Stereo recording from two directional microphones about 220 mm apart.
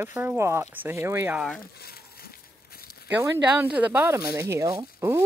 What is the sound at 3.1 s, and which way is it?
Speech, 10° right (ahead or behind).